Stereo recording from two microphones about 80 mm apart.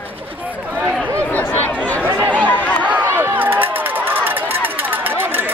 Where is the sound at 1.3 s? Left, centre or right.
Left.